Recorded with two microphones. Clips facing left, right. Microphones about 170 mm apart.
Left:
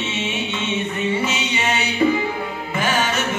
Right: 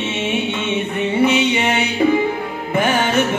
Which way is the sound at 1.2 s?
60° right (ahead or behind).